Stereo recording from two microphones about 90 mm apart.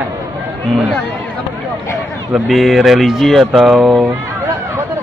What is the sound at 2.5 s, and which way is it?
Speech, centre (ahead or behind).